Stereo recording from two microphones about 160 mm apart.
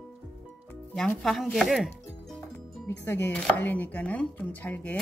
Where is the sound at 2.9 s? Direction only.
15° left (ahead or behind).